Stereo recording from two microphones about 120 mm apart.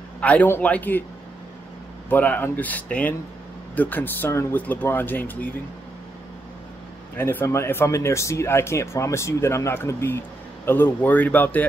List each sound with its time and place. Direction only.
0.2 s speech: 10° left (ahead or behind)
2.0 s speech: 15° left (ahead or behind)
7.2 s speech: 20° left (ahead or behind)